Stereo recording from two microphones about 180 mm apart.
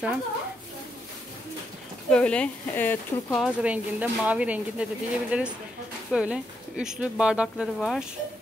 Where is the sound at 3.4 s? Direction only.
5° right (ahead or behind).